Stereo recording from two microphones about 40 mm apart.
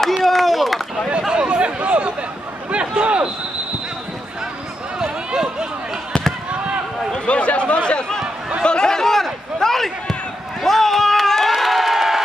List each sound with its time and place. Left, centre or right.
0.2 s clapping: centre
1.3 s chatter: right
2.7 s a sound: right
4.9 s run: centre
6.5 s basketball bounce: right
7.2 s chatter: left
8.6 s a sound: centre